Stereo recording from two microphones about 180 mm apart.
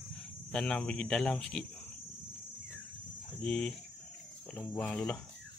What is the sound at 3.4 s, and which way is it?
Speech, 5° left (ahead or behind).